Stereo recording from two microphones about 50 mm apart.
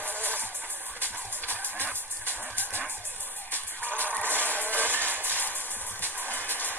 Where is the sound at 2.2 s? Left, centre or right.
Right.